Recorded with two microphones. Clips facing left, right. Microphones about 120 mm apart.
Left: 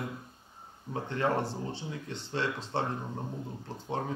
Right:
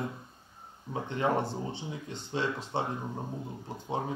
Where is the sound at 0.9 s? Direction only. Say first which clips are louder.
Right 1 dB; 15° right (ahead or behind).